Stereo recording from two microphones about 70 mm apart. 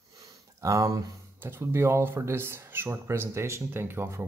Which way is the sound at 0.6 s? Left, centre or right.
Right.